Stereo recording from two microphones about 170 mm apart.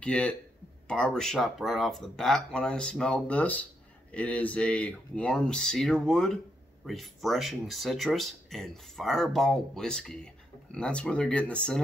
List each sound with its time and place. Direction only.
0.0 s speech: 5° left (ahead or behind)